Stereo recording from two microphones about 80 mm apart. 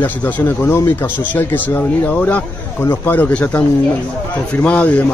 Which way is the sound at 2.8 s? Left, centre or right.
Left.